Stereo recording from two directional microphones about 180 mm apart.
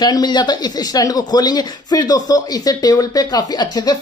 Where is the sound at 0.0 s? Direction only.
25° left (ahead or behind).